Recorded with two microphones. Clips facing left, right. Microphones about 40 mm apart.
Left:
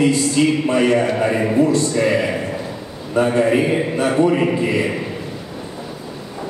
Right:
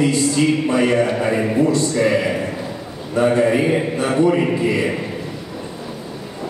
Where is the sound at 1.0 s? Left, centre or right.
Centre.